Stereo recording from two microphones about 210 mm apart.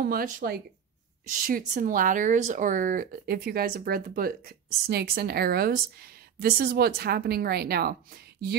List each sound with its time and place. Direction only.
0.0 s a woman's voice: 45° right (ahead or behind)